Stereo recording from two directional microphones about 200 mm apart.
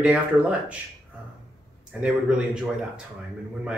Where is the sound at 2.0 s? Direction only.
5° right (ahead or behind).